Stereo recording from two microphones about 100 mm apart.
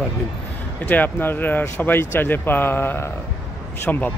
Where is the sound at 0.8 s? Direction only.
20° left (ahead or behind).